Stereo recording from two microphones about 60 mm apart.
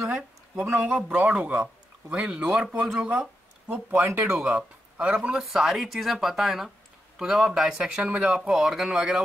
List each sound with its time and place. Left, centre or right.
1.0 s speech: centre
2.0 s speech: centre
4.0 s speech: right
4.4 s speech: centre
5.4 s speech: centre